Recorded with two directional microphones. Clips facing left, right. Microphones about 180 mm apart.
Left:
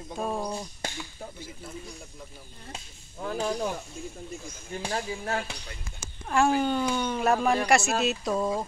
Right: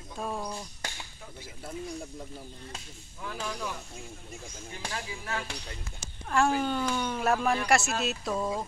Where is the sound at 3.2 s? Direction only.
35° left (ahead or behind).